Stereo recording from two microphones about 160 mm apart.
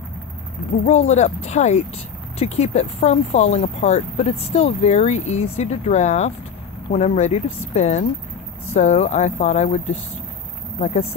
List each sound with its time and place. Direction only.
0.8 s speech: 45° left (ahead or behind)